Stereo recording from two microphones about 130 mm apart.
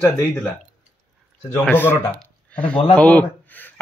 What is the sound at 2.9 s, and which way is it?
Speech, 10° left (ahead or behind).